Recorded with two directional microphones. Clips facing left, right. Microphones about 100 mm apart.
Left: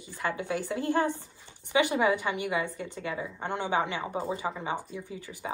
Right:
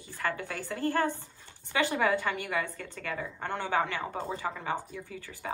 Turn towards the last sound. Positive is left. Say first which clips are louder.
# left 1 dB
turn(degrees=15)  # may be behind; listen again after turning